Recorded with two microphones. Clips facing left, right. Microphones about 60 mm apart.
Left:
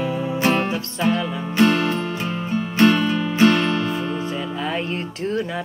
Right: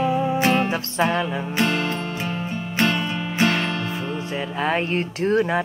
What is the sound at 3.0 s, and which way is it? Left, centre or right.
Music, centre.